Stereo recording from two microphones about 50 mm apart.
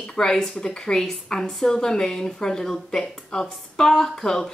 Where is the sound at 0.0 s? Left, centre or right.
Centre.